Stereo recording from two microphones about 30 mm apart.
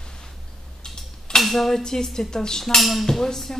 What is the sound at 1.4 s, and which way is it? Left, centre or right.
Speech, centre.